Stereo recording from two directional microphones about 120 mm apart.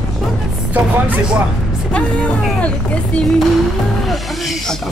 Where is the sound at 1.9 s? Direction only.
10° left (ahead or behind).